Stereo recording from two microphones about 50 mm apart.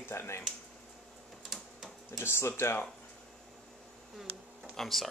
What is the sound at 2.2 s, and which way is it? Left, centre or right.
Speech, left.